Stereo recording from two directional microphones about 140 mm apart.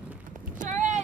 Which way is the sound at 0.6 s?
60° right (ahead or behind).